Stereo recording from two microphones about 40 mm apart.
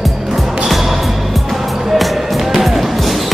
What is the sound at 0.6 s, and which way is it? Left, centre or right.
Music, centre.